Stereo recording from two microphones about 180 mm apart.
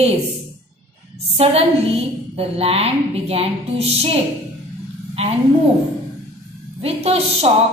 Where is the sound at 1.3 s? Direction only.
35° right (ahead or behind).